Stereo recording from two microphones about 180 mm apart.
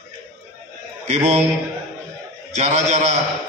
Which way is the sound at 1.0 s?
40° right (ahead or behind).